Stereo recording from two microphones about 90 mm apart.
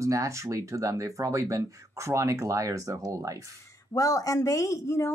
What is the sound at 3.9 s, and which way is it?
Speech, 40° left (ahead or behind).